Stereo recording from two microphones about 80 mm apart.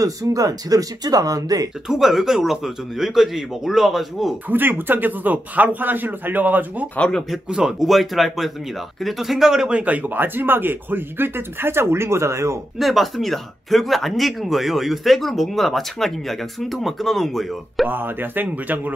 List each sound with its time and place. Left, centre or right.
0.0 s speech: right
1.9 s speech: centre
4.5 s speech: right
7.0 s speech: centre
7.2 s speech: centre; by 12.5 s right
12.7 s speech: centre
17.8 s speech: right